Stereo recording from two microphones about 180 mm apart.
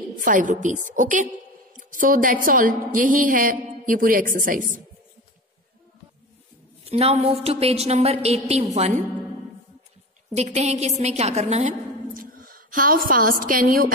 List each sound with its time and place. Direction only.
0.2 s a woman's voice: 45° right (ahead or behind)
6.8 s a woman's voice: 35° right (ahead or behind)
10.3 s a woman's voice: 40° right (ahead or behind)